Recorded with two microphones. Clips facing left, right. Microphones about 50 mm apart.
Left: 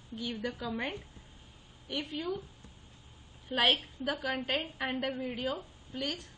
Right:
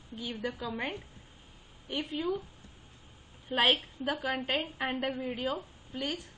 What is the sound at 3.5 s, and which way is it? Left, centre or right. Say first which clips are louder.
A woman's voice: right 1 dB; centre.